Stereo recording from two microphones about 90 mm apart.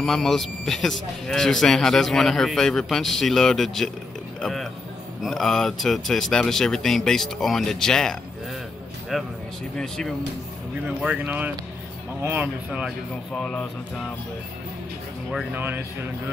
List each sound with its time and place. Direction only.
0.0 s a man's voice: 5° left (ahead or behind)
11.2 s speech: 20° right (ahead or behind)
13.3 s a man's voice: 10° left (ahead or behind)
15.5 s speech: 25° right (ahead or behind)